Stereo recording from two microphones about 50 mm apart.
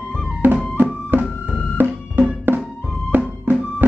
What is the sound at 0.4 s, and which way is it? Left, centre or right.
Music, right.